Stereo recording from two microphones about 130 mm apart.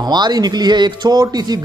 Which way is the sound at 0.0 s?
30° right (ahead or behind).